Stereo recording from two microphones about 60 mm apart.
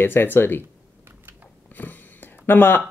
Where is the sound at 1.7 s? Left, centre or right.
Left.